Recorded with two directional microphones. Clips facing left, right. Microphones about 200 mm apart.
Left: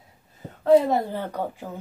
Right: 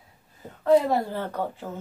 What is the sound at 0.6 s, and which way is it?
Speech, 20° left (ahead or behind).